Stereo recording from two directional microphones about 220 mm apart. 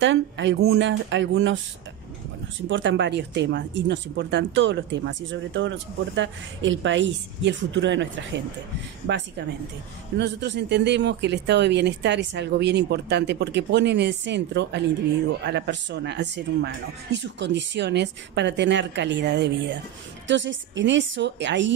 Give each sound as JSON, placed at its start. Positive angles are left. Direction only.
{"t": 0.0, "sound": "speech", "side_deg": -55}
{"t": 2.7, "sound": "speech", "side_deg": -55}
{"t": 10.1, "sound": "speech", "side_deg": -50}